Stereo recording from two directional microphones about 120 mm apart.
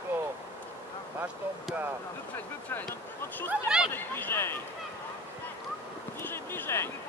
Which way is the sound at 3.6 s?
5° right (ahead or behind).